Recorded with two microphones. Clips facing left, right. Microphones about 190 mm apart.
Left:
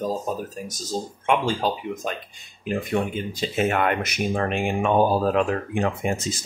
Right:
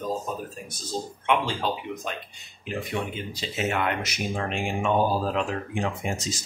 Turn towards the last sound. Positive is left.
turn(degrees=55)  # may be behind; listen again after turning